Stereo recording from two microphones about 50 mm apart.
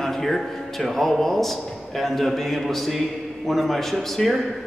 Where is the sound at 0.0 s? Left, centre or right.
Centre.